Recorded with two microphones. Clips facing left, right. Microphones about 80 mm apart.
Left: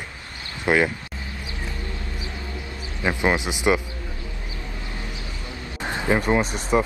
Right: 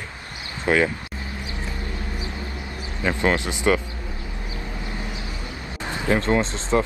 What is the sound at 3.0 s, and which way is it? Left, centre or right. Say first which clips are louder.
Speech: even; centre.